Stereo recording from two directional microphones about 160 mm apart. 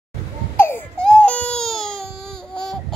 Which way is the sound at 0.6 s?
15° left (ahead or behind).